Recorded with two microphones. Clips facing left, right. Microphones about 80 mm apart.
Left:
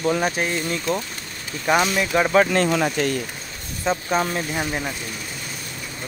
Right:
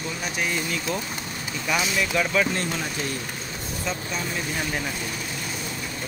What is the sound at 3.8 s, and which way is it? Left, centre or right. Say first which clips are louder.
Speech: left 10 dB; left.